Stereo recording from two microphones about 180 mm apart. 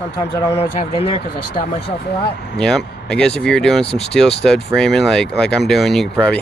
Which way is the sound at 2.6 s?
5° left (ahead or behind).